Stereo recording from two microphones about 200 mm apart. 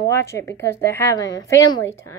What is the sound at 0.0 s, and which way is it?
A woman's voice, 15° left (ahead or behind).